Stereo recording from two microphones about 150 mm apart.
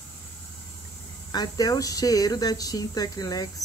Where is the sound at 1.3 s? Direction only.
25° left (ahead or behind).